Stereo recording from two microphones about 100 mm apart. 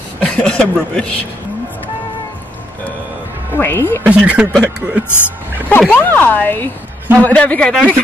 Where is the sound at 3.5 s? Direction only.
20° left (ahead or behind).